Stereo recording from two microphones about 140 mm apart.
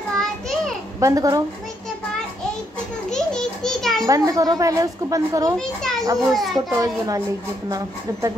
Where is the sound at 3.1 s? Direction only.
5° left (ahead or behind).